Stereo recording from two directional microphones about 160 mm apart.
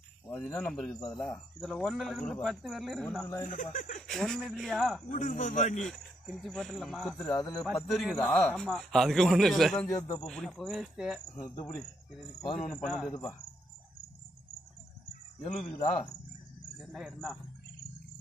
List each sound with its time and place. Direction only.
0.3 s speech: 5° left (ahead or behind)
3.4 s speech: 55° left (ahead or behind)
4.1 s speech: centre (ahead or behind)
5.0 s speech: 55° left (ahead or behind)
5.8 s speech: centre (ahead or behind)
7.3 s speech: 25° left (ahead or behind)
7.6 s speech: 5° left (ahead or behind)
13.1 s speech: 25° left (ahead or behind)
15.4 s speech: 45° left (ahead or behind)
15.8 s speech: 30° left (ahead or behind)
16.7 s speech: centre (ahead or behind)